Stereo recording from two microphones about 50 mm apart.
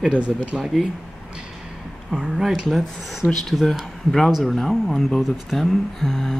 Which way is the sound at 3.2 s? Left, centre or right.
Right.